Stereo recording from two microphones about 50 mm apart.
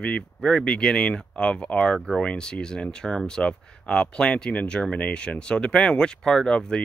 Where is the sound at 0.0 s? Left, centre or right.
Centre.